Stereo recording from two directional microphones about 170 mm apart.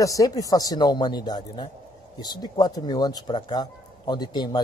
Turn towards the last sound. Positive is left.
turn(degrees=25)  # may be behind; listen again after turning